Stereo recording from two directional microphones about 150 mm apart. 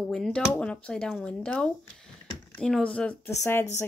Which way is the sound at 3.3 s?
20° left (ahead or behind).